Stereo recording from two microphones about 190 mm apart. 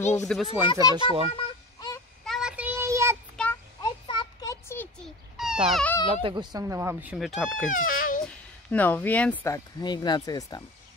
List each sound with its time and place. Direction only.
0.2 s a child's voice: centre (ahead or behind)
0.7 s a child's voice: 20° left (ahead or behind)
0.9 s a child's voice: 25° right (ahead or behind)
2.2 s child singing: centre (ahead or behind)
3.4 s a sound: 5° left (ahead or behind)
3.8 s a sound: 20° left (ahead or behind)
5.0 s baby cry: 5° right (ahead or behind)
6.2 s speech: 25° right (ahead or behind); by 7.6 s centre (ahead or behind)
7.7 s baby cry: 45° left (ahead or behind)
8.3 s speech: 5° left (ahead or behind)